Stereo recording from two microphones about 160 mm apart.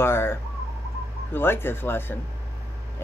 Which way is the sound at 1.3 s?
15° left (ahead or behind).